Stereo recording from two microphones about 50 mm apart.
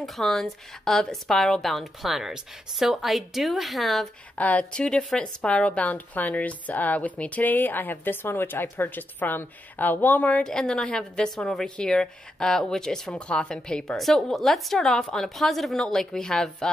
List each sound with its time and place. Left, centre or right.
0.0 s a woman's voice: centre
4.4 s speech: left
4.7 s speech: centre
5.7 s speech: left
10.4 s a woman's voice: centre
13.9 s a woman's voice: centre